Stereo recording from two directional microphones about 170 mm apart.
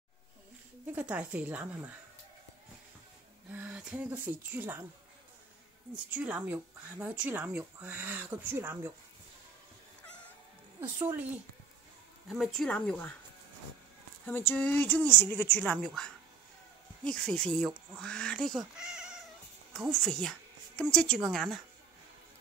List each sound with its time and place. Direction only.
0.9 s speech: 10° right (ahead or behind)
3.5 s speech: 10° right (ahead or behind)
6.0 s speech: 10° right (ahead or behind)
10.8 s speech: 15° right (ahead or behind)
12.3 s speech: centre (ahead or behind)
14.3 s a woman's voice: 10° left (ahead or behind)
19.7 s a sound: centre (ahead or behind)
20.9 s speech: 5° left (ahead or behind)